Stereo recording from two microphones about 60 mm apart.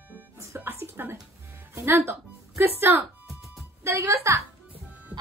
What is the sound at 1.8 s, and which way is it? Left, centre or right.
Music, right.